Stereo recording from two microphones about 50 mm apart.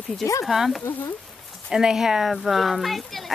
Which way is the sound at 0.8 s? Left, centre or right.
Left.